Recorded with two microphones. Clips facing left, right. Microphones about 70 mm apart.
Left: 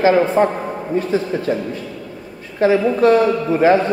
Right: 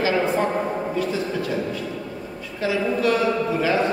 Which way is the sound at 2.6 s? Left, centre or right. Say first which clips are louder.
Left 8 dB; left.